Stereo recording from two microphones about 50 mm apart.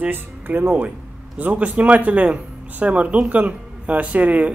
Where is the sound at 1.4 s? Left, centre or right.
Right.